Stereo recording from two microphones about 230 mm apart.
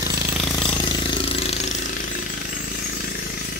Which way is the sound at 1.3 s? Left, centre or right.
Left.